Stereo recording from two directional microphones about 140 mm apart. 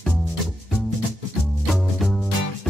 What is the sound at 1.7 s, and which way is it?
Music, centre (ahead or behind).